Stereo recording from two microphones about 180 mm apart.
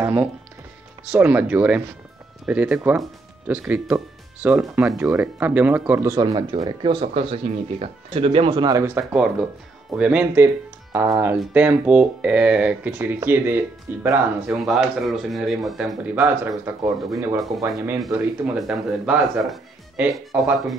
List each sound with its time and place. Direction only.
0.0 s speech: 15° right (ahead or behind)
16.2 s speech: 10° right (ahead or behind)
18.1 s speech: 5° right (ahead or behind)